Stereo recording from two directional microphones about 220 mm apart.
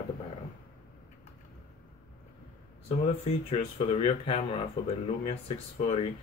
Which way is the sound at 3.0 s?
25° left (ahead or behind).